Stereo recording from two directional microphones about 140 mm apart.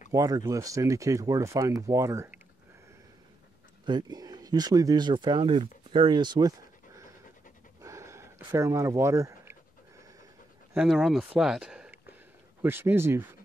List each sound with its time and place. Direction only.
0.1 s speech: 25° right (ahead or behind)
3.8 s speech: 30° right (ahead or behind)
7.8 s a sound: 20° right (ahead or behind)
10.7 s speech: 5° right (ahead or behind)